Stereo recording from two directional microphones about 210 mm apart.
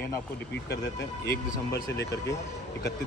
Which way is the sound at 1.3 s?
50° left (ahead or behind).